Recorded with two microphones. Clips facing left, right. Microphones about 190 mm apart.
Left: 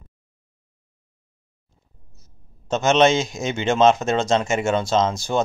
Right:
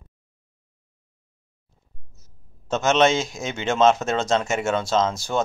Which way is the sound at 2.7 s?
Centre (ahead or behind).